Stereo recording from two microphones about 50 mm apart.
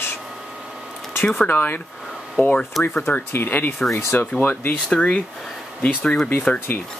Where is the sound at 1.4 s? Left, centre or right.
Left.